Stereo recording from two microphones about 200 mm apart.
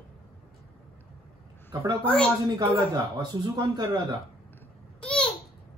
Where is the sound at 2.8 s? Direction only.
20° right (ahead or behind).